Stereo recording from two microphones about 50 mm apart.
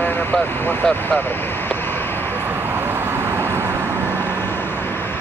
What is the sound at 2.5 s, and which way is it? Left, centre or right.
Vehicle, right.